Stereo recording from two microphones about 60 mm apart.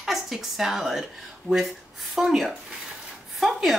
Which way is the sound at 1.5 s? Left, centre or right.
Right.